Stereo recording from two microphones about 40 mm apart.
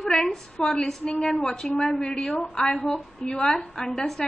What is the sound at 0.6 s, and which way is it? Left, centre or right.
A woman's voice, left.